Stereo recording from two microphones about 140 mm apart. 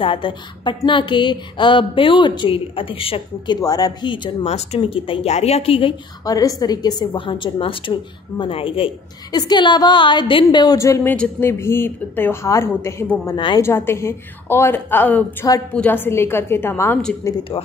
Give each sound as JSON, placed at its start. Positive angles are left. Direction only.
{"t": 0.0, "sound": "a woman's voice", "side_deg": 35}
{"t": 3.6, "sound": "a woman's voice", "side_deg": 25}
{"t": 4.5, "sound": "a woman's voice", "side_deg": 45}
{"t": 6.2, "sound": "a woman's voice", "side_deg": 25}